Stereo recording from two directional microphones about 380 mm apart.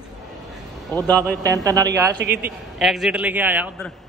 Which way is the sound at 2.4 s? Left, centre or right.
Centre.